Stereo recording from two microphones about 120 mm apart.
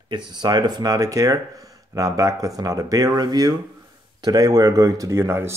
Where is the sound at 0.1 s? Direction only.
35° right (ahead or behind).